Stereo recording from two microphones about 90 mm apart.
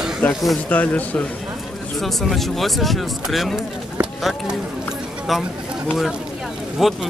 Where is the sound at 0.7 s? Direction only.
20° left (ahead or behind).